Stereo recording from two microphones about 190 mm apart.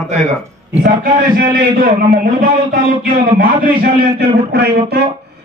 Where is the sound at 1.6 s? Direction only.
50° right (ahead or behind).